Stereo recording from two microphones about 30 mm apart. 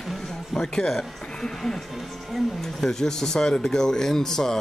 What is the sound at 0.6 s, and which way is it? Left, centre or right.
Speech, left.